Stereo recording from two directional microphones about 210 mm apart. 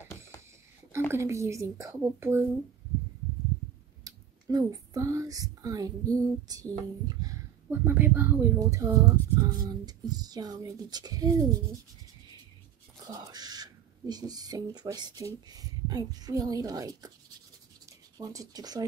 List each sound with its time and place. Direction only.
1.1 s speech: 15° right (ahead or behind)
4.0 s speech: 20° right (ahead or behind)
13.0 s speech: 15° right (ahead or behind)
18.1 s speech: 15° right (ahead or behind)